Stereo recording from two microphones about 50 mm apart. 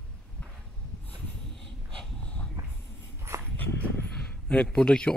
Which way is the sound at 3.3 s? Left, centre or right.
Right.